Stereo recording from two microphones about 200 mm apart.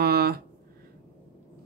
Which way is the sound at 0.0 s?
50° right (ahead or behind).